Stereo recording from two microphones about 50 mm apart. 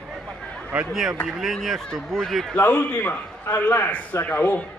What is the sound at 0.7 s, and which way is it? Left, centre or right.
Speech, right.